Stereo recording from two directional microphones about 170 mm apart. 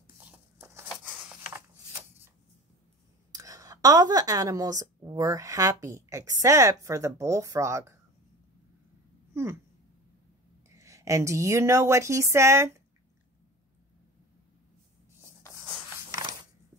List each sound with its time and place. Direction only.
0.2 s a sound: 10° right (ahead or behind)
2.0 s shuffling cards: 15° right (ahead or behind)
3.3 s a woman's voice: 20° right (ahead or behind)
9.3 s a sound: 15° right (ahead or behind)
10.7 s speech: 20° right (ahead or behind)
16.1 s mechanisms: 25° right (ahead or behind)